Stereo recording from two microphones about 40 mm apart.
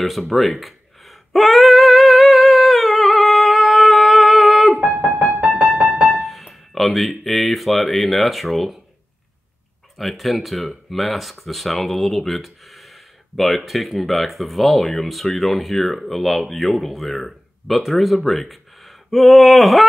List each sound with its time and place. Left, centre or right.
0.0 s a sound: centre
5.5 s music: right
6.0 s speech: centre
9.9 s speech: centre